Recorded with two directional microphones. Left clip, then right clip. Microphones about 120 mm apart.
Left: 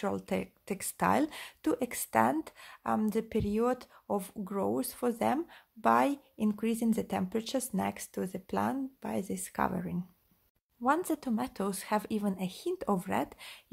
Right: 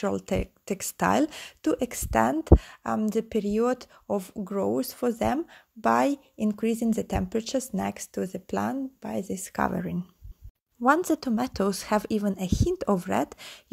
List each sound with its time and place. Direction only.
0.0 s speech: 35° right (ahead or behind)